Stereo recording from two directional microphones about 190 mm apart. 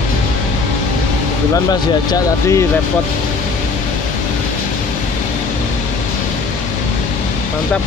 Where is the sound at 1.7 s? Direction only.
20° left (ahead or behind).